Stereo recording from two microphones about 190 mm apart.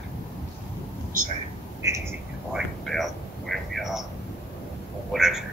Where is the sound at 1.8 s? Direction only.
15° right (ahead or behind).